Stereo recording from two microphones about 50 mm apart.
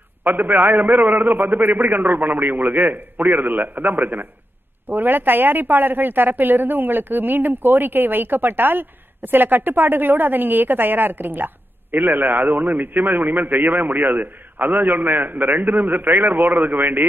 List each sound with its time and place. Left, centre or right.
0.2 s a woman's voice: right